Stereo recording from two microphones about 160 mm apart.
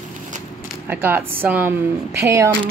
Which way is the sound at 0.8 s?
10° right (ahead or behind).